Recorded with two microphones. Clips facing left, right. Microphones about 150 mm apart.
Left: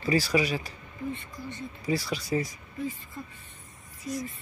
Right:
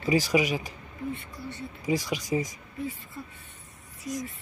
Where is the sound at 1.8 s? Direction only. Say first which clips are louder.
Right 2 dB; 15° right (ahead or behind).